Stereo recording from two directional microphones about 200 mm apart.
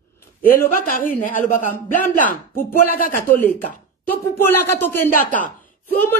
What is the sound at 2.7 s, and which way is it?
Speech, 45° left (ahead or behind).